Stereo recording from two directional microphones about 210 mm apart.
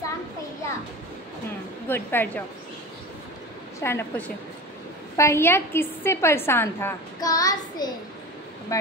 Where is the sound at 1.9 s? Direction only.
10° left (ahead or behind).